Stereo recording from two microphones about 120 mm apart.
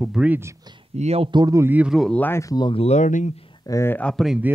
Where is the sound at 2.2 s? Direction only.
20° left (ahead or behind).